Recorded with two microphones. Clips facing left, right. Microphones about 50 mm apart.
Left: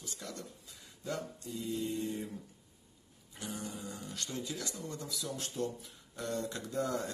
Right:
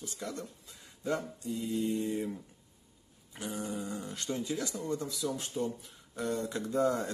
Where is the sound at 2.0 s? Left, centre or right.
Centre.